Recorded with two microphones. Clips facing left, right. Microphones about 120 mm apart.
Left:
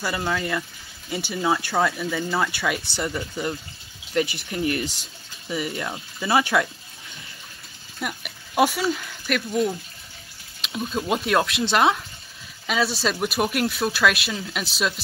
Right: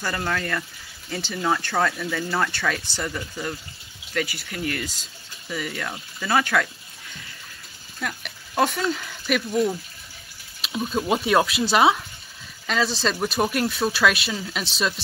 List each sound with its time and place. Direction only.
0.0 s speech: 10° left (ahead or behind)
8.0 s speech: 10° left (ahead or behind)